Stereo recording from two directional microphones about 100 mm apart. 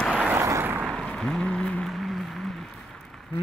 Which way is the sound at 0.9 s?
5° left (ahead or behind).